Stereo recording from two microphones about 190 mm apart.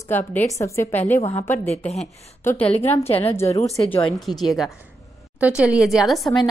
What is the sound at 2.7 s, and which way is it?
Speech, 35° left (ahead or behind).